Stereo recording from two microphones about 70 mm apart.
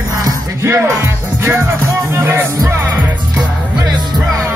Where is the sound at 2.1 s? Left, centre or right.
Right.